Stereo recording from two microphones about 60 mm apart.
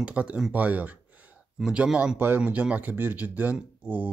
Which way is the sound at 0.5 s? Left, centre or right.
Right.